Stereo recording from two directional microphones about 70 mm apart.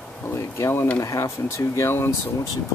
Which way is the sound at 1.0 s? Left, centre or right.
Left.